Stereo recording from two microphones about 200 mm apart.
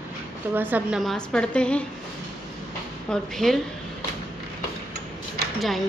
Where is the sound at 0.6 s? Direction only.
10° right (ahead or behind).